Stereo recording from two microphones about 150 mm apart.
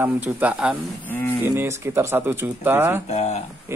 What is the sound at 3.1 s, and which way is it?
Speech, 50° left (ahead or behind).